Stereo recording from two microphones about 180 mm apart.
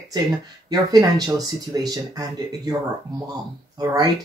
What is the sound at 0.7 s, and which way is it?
Speech, 20° right (ahead or behind).